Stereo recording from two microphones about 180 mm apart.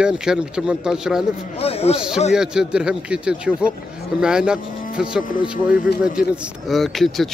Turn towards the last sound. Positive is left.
turn(degrees=0)  # may be behind; listen again after turning